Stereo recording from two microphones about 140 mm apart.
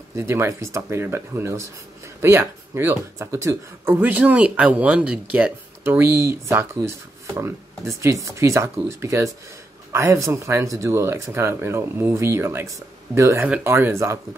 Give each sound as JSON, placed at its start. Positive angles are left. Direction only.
{"t": 0.1, "sound": "speech", "side_deg": -20}